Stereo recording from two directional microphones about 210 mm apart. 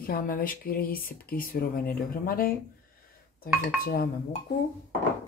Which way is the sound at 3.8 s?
45° left (ahead or behind).